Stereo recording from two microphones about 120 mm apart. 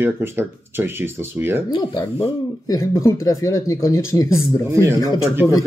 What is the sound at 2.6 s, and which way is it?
Speech, 25° left (ahead or behind).